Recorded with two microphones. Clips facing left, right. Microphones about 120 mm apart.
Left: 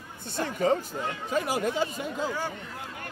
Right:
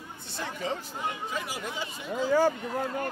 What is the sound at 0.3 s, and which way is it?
Speech, 50° left (ahead or behind).